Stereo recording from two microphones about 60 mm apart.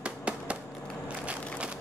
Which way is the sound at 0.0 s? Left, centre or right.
Centre.